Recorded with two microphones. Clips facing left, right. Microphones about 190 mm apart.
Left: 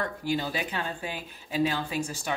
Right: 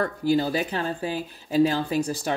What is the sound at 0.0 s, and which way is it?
Speech, 40° right (ahead or behind).